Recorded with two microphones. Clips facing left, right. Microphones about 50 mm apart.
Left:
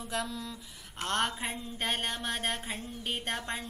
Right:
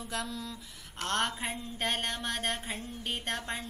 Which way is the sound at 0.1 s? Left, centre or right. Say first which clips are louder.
Left 2 dB; centre.